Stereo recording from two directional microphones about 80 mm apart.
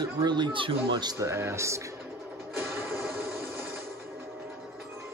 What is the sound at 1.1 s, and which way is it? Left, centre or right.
Speech, right.